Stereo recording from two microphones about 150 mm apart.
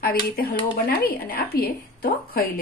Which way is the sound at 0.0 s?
85° left.